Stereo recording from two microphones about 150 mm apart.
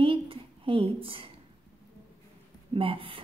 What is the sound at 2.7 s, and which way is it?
Speech, 35° right (ahead or behind).